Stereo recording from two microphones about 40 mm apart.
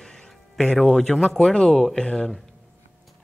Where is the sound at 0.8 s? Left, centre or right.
Centre.